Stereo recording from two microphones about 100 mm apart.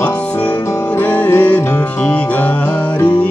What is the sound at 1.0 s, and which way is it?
Music, 15° left (ahead or behind).